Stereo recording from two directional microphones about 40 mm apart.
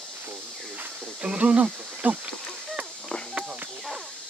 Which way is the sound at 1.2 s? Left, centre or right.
Right.